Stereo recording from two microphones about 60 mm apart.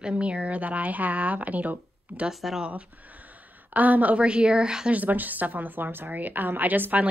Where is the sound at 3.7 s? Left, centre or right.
Right.